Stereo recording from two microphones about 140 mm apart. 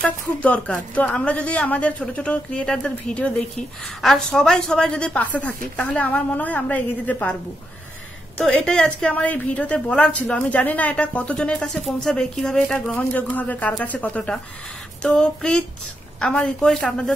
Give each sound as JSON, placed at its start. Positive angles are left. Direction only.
{"t": 0.0, "sound": "a woman's voice", "side_deg": 10}
{"t": 8.4, "sound": "a woman's voice", "side_deg": 5}
{"t": 15.0, "sound": "a sound", "side_deg": 5}
{"t": 16.2, "sound": "a woman's voice", "side_deg": 5}